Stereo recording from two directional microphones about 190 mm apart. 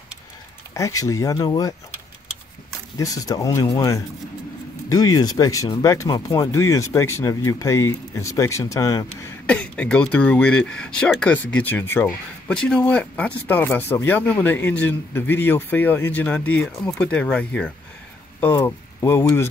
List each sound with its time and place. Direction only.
0.7 s a man's voice: 15° left (ahead or behind)
3.0 s a man's voice: 20° left (ahead or behind)
9.5 s a man's voice: 5° left (ahead or behind)